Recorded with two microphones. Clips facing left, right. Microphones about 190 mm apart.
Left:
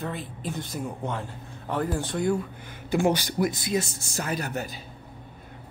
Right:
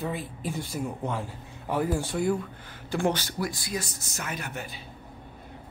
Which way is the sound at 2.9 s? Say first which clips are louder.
Left 4 dB; 10° left (ahead or behind).